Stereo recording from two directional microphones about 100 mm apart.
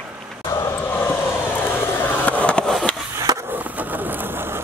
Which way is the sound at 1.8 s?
20° left (ahead or behind).